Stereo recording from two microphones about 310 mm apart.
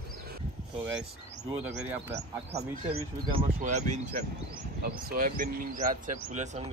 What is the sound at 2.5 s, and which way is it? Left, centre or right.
Speech, centre.